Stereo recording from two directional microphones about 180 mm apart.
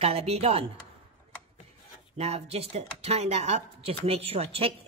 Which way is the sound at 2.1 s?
35° right (ahead or behind).